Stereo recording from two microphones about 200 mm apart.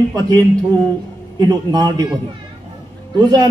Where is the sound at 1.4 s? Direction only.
20° right (ahead or behind).